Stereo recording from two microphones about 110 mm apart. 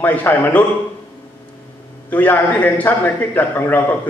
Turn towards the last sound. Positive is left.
turn(degrees=20)  # may be behind; listen again after turning